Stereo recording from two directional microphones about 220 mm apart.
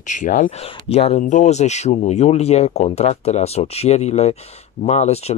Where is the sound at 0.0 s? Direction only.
35° left (ahead or behind).